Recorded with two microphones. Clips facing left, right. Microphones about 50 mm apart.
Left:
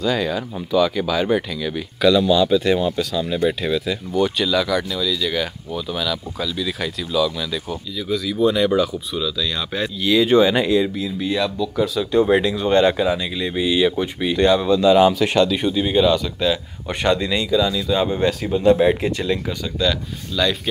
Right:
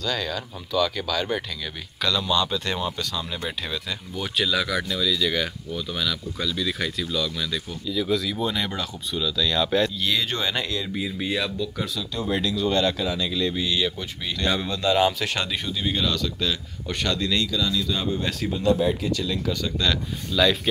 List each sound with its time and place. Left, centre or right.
0.0 s speech: centre
11.0 s speech: centre
12.0 s speech: left
14.5 s speech: centre
15.5 s speech: centre
18.7 s speech: left
19.0 s speech: left
19.6 s speech: centre